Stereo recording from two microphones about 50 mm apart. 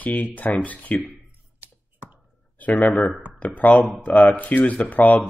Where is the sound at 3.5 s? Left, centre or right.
Left.